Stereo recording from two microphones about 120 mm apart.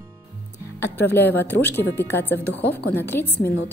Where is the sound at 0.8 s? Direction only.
20° left (ahead or behind).